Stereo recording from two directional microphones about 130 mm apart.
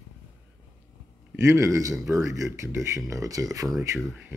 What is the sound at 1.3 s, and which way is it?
Speech, 20° right (ahead or behind).